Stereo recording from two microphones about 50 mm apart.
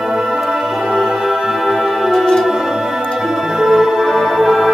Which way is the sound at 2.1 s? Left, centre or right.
Centre.